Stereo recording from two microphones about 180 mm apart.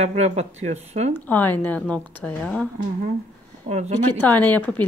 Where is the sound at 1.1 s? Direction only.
10° left (ahead or behind).